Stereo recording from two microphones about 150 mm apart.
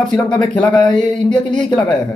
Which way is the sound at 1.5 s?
30° left (ahead or behind).